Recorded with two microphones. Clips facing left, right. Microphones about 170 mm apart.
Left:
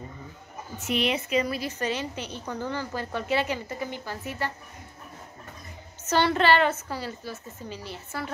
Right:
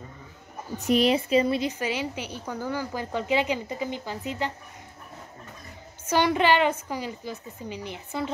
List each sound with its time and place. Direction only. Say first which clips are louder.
0.7 s a woman's voice: right 6 dB; 35° right (ahead or behind)
1.7 s a woman's voice: right 1 dB; 10° right (ahead or behind)
6.0 s a woman's voice: even; 10° right (ahead or behind)